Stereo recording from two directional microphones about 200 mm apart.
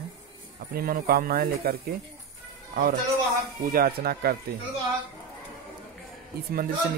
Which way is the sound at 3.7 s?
50° right (ahead or behind).